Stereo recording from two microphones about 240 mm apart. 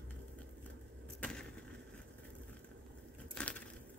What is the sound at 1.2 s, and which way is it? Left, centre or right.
Skateboard, centre.